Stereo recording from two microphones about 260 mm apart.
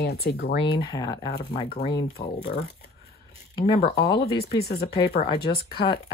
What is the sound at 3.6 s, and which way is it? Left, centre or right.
Speech, left.